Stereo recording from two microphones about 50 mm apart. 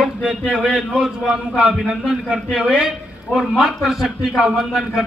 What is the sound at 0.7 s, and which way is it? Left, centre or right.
Speech, centre.